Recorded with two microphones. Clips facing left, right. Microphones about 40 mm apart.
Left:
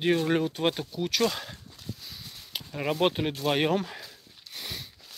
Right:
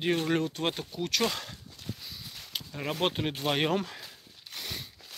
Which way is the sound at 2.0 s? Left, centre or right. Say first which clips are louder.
Even; centre.